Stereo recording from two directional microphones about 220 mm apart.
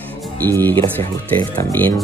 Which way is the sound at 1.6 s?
10° left (ahead or behind).